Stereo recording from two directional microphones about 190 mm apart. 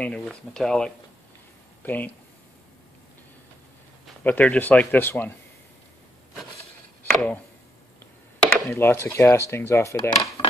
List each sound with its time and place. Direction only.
0.0 s speech: 5° left (ahead or behind)
4.2 s speech: 10° left (ahead or behind)
7.0 s chop: 10° left (ahead or behind)
8.5 s speech: 10° left (ahead or behind)